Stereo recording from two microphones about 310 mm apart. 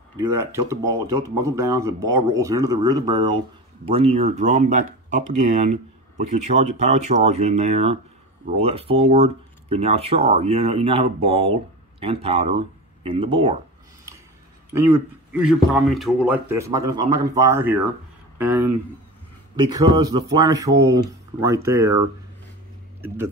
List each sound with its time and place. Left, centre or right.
0.7 s speech: centre
14.7 s speech: centre
23.0 s speech: centre